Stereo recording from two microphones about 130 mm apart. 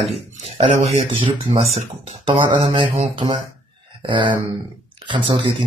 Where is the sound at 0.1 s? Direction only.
50° right (ahead or behind).